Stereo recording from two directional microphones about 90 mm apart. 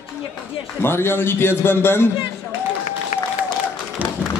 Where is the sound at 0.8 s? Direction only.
25° left (ahead or behind).